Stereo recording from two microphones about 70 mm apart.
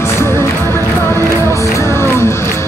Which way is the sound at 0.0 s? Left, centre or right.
Left.